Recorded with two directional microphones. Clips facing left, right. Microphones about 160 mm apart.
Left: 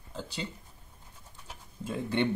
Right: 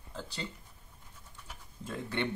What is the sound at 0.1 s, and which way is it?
Speech, 5° left (ahead or behind).